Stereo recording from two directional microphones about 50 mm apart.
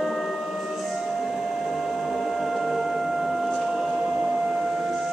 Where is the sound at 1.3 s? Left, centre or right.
Centre.